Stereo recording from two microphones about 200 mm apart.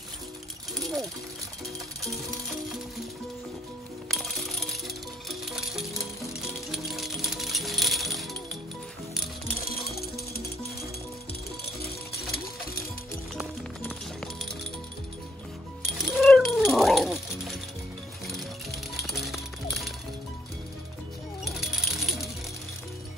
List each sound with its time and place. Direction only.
0.8 s pigeon: centre (ahead or behind)
4.1 s music: centre (ahead or behind)
9.7 s music: 50° left (ahead or behind)
13.4 s music: centre (ahead or behind)
16.0 s cat: centre (ahead or behind)
19.0 s music: centre (ahead or behind)
21.5 s coin: centre (ahead or behind)